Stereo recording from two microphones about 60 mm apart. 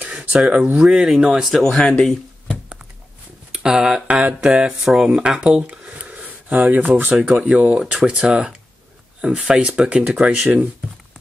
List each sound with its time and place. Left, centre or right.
0.0 s a sound: right
0.4 s speech: centre
1.6 s speech: centre
3.5 s speech: centre
4.1 s speech: right